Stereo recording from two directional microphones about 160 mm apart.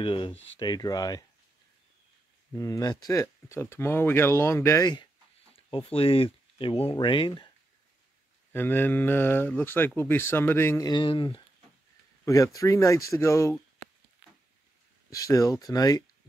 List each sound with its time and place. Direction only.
0.0 s speech: 30° left (ahead or behind)
2.5 s speech: 20° left (ahead or behind)
5.5 s speech: 35° left (ahead or behind)
8.5 s speech: 15° left (ahead or behind)
10.9 s speech: 30° left (ahead or behind)
12.3 s speech: 20° left (ahead or behind)
15.0 s speech: 20° left (ahead or behind)